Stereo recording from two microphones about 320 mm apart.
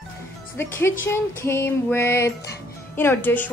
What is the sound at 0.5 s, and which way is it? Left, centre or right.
Speech, centre.